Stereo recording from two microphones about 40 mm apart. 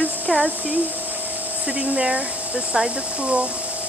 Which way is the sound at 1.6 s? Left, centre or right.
Right.